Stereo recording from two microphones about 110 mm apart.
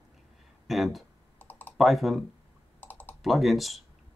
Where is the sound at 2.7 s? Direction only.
15° left (ahead or behind).